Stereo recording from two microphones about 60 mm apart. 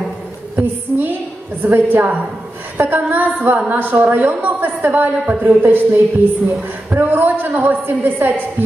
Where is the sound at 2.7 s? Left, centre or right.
Right.